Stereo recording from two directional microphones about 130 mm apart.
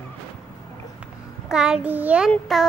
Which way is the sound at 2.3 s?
Centre (ahead or behind).